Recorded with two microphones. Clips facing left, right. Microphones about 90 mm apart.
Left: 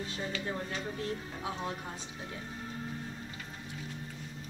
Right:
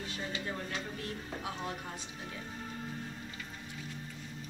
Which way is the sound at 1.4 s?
25° left (ahead or behind).